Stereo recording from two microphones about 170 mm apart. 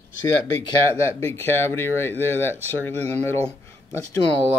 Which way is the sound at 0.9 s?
15° left (ahead or behind).